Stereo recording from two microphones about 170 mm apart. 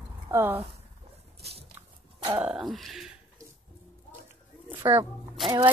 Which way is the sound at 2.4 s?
Centre (ahead or behind).